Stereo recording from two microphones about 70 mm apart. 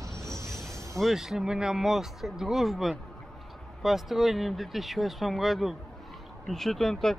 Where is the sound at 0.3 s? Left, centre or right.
Right.